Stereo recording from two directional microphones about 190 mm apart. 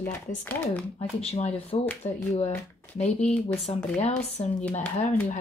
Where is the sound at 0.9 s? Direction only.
30° left (ahead or behind).